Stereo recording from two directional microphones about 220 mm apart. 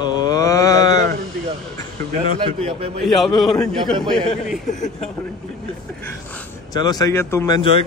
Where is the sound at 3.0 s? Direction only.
Centre (ahead or behind).